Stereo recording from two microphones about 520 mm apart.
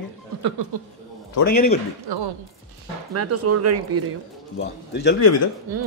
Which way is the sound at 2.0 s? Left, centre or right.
Right.